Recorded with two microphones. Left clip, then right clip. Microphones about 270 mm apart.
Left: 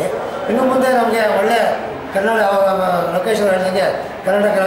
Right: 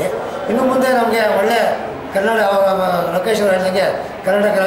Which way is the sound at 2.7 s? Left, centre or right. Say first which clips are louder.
Even; centre.